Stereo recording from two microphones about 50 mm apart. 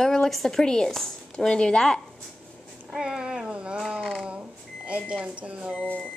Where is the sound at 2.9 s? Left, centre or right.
Centre.